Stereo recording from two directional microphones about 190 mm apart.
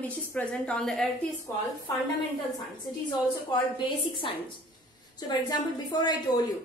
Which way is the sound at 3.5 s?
25° left (ahead or behind).